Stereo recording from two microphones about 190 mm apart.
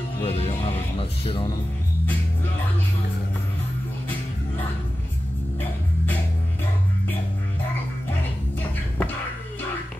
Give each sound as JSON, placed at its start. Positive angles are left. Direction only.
{"t": 0.2, "sound": "speech", "side_deg": 30}